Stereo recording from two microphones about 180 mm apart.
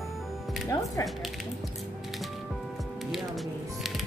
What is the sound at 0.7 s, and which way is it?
Speech, 20° left (ahead or behind).